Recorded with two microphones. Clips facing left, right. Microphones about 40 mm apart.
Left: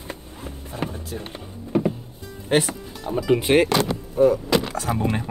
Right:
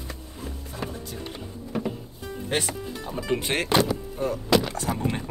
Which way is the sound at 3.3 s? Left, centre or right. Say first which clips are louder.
Left 6 dB; centre.